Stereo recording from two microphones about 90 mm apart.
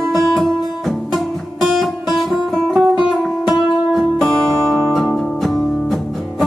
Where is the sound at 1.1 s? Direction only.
Centre (ahead or behind).